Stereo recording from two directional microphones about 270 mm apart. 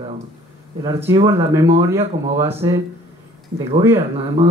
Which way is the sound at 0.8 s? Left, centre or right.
Centre.